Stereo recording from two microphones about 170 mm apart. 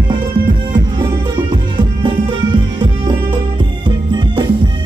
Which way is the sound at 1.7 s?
30° right (ahead or behind).